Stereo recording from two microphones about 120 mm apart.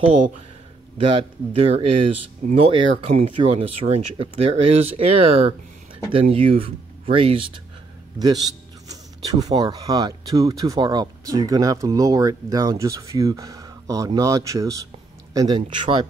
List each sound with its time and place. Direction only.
1.0 s speech: 50° right (ahead or behind)
8.2 s speech: 30° right (ahead or behind)
15.3 s speech: 40° right (ahead or behind)